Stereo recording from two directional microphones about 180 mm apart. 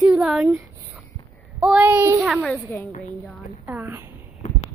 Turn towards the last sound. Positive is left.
turn(degrees=-10)  # may be behind; listen again after turning